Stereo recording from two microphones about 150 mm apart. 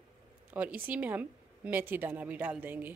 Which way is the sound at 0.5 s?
10° right (ahead or behind).